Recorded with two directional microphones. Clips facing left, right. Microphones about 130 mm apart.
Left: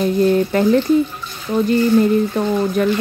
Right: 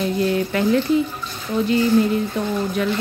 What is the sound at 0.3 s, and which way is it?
Speech, 40° left (ahead or behind).